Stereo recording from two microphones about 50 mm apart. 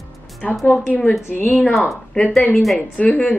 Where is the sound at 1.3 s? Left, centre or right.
Left.